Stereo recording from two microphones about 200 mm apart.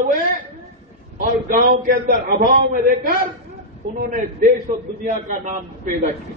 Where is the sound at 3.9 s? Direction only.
40° right (ahead or behind).